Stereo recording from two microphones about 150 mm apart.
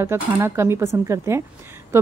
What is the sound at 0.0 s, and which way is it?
Speech, 15° right (ahead or behind).